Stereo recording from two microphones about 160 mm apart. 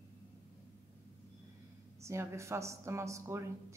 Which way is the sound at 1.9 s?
15° right (ahead or behind).